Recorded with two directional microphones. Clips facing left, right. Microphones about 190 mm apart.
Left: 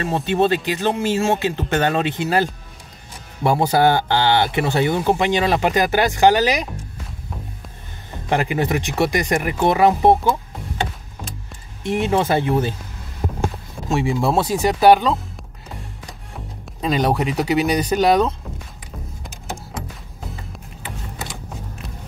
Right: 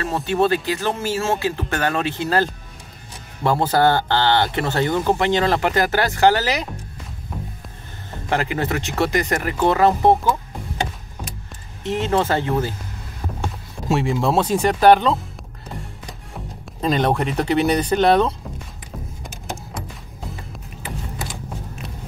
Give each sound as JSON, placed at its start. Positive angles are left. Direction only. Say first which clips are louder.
{"t": 0.0, "sound": "speech", "louder": "left 1 dB", "side_deg": 20}
{"t": 8.3, "sound": "speech", "louder": "left 2 dB", "side_deg": 15}
{"t": 11.8, "sound": "speech", "louder": "left 1 dB", "side_deg": 15}
{"t": 13.8, "sound": "speech", "louder": "even", "side_deg": -5}
{"t": 16.8, "sound": "speech", "louder": "even", "side_deg": 5}